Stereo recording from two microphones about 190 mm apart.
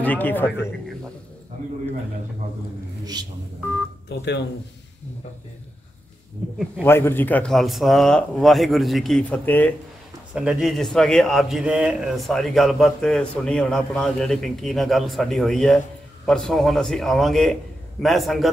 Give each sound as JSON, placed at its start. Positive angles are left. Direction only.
{"t": 0.0, "sound": "speech", "side_deg": 10}
{"t": 4.1, "sound": "speech", "side_deg": 60}
{"t": 6.8, "sound": "a man's voice", "side_deg": 10}
{"t": 10.3, "sound": "a man's voice", "side_deg": -5}